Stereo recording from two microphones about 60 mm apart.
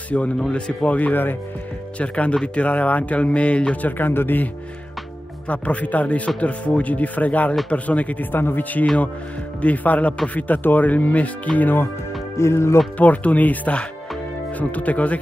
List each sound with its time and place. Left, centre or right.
0.1 s speech: left
5.5 s speech: left
12.4 s speech: left
12.9 s speech: left